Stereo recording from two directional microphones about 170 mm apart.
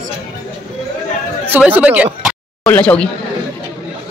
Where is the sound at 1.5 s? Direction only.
10° right (ahead or behind).